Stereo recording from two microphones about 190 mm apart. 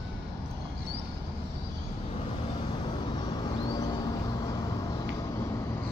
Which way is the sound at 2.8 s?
25° left (ahead or behind).